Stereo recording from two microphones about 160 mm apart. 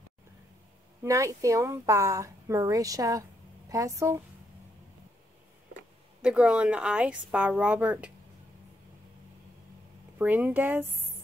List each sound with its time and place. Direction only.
1.0 s speech: 20° right (ahead or behind)
6.2 s speech: 5° right (ahead or behind)
10.1 s speech: 10° right (ahead or behind)